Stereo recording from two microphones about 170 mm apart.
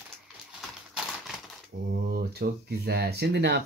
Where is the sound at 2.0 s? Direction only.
70° right (ahead or behind).